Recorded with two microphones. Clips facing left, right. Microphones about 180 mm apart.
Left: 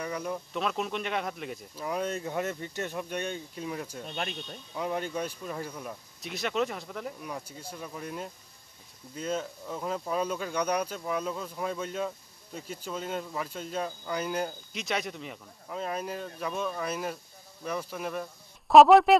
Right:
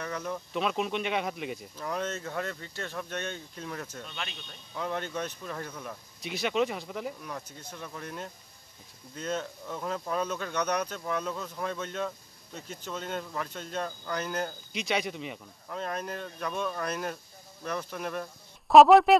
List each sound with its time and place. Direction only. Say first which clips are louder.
0.0 s speech: left 1 dB; 10° left (ahead or behind)
0.5 s speech: right 4 dB; centre (ahead or behind)
1.8 s speech: left 3 dB; 10° left (ahead or behind)
4.0 s speech: left 5 dB; 45° left (ahead or behind)
4.7 s speech: left 1 dB; 10° left (ahead or behind)
6.2 s speech: right 2 dB; centre (ahead or behind)
7.2 s speech: left 1 dB; 10° left (ahead or behind)